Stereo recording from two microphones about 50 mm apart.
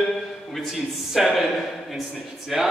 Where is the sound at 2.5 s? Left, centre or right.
Centre.